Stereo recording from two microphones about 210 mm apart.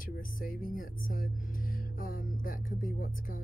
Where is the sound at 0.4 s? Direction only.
40° left (ahead or behind).